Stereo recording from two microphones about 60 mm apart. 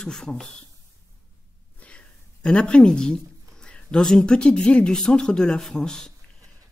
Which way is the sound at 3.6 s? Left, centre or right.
Centre.